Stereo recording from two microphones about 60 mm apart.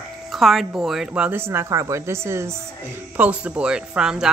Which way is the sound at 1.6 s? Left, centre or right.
Right.